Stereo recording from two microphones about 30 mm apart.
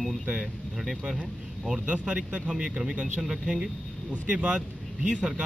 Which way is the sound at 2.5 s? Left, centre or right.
Right.